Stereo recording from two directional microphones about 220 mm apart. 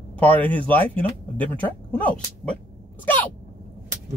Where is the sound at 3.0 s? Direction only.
10° left (ahead or behind).